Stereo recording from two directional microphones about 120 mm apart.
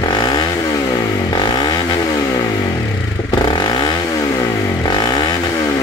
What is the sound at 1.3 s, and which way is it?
Vehicle, 40° left (ahead or behind).